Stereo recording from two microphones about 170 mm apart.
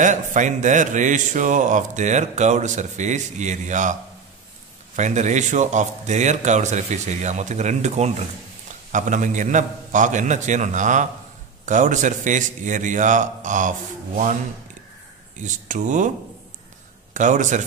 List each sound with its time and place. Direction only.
0.0 s speech: 45° right (ahead or behind)
4.9 s speech: 45° right (ahead or behind)
15.4 s speech: 45° right (ahead or behind)
17.1 s speech: 45° right (ahead or behind)